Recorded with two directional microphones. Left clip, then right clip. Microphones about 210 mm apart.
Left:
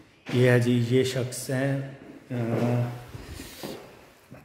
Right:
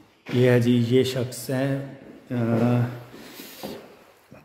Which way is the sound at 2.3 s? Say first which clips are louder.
Right 4 dB; 25° right (ahead or behind).